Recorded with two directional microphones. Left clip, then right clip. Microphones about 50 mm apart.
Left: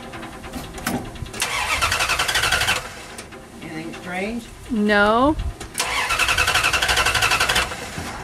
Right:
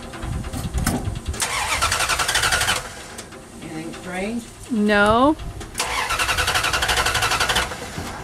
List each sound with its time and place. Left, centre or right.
0.8 s vehicle: centre
3.7 s a sound: left
4.8 s speech: centre
5.8 s vehicle: centre